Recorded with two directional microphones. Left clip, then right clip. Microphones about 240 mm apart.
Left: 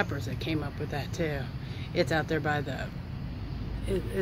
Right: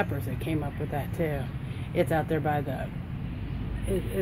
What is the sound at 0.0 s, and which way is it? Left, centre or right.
Speech, centre.